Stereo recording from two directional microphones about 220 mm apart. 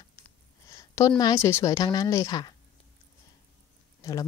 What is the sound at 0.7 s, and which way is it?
Speech, 15° left (ahead or behind).